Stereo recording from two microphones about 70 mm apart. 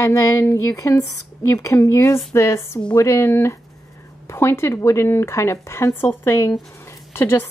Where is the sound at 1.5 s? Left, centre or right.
Left.